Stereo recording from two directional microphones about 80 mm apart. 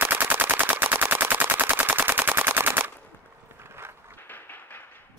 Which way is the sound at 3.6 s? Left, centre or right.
Right.